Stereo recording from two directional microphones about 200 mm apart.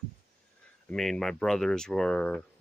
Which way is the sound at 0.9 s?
Centre (ahead or behind).